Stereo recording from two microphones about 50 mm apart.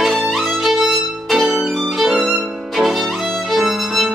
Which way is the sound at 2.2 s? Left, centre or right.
Centre.